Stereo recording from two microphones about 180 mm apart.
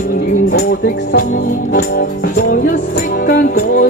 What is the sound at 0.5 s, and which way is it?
Music, 60° left (ahead or behind).